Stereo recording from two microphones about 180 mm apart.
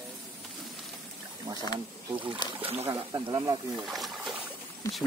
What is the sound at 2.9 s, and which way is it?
Speech, 20° right (ahead or behind).